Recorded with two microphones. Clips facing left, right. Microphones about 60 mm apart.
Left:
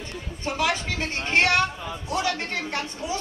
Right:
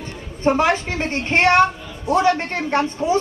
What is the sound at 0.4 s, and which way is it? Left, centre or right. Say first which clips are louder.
A woman's voice: right 9 dB; right.